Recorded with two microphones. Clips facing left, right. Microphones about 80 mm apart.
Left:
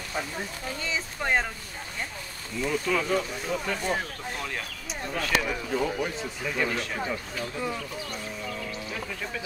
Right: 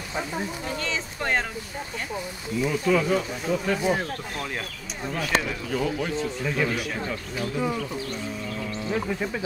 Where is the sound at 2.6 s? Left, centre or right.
Centre.